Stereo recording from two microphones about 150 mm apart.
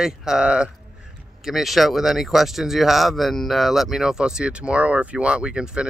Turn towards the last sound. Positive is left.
turn(degrees=-5)  # may be behind; listen again after turning